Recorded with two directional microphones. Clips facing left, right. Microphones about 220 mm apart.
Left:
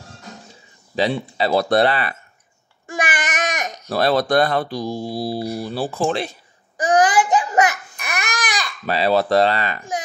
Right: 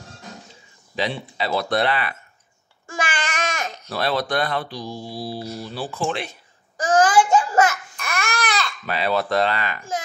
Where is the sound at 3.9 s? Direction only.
40° left (ahead or behind).